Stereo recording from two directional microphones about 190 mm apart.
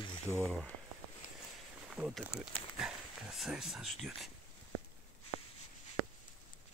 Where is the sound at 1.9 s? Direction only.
5° right (ahead or behind).